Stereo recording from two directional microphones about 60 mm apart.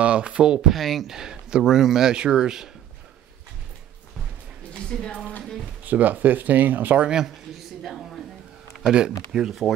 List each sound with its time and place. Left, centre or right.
0.0 s speech: centre
1.1 s speech: centre
4.7 s a woman's voice: centre
5.9 s speech: right
7.0 s speech: centre
7.5 s a sound: centre
9.3 s speech: centre